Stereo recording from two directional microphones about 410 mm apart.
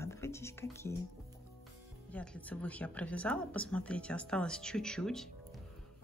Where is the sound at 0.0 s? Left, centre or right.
Centre.